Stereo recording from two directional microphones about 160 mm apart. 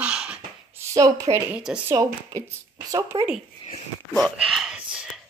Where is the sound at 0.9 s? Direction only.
20° right (ahead or behind).